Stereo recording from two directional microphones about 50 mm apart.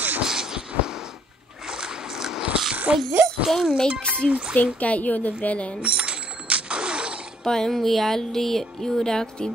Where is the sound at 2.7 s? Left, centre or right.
Right.